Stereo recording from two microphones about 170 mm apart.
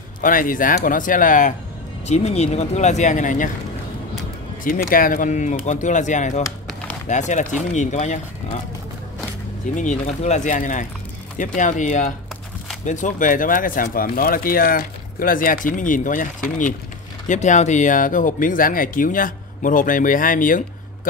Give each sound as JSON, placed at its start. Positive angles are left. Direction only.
{"t": 0.2, "sound": "speech", "side_deg": 55}
{"t": 2.0, "sound": "speech", "side_deg": 40}
{"t": 4.6, "sound": "speech", "side_deg": 55}
{"t": 9.8, "sound": "speech", "side_deg": 45}